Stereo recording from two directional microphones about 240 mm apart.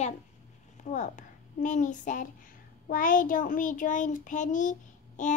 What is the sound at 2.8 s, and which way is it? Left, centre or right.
Child singing, left.